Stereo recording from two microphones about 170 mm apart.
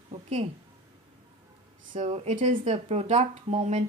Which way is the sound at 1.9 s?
40° right (ahead or behind).